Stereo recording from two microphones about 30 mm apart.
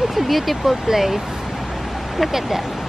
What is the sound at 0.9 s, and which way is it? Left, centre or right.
Speech, centre.